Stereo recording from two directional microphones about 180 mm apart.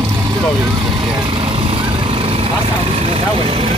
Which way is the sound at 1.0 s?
30° right (ahead or behind).